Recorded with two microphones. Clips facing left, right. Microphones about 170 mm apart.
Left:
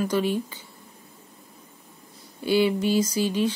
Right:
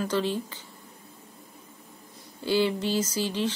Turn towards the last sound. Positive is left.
turn(degrees=15)  # may be behind; listen again after turning